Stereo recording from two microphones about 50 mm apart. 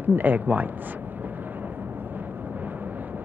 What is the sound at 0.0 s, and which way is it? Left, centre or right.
Speech, right.